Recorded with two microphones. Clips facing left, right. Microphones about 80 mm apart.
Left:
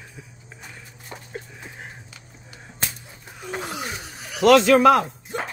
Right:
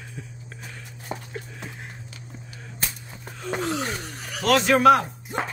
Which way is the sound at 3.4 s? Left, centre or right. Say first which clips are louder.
Right 4 dB; centre.